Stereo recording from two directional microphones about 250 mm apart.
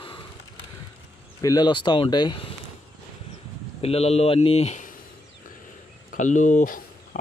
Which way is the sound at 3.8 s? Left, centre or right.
Left.